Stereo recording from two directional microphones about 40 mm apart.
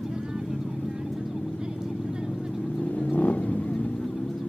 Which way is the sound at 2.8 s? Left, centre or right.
Left.